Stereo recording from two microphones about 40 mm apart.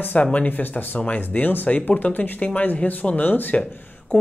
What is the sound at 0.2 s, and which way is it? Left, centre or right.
Speech, left.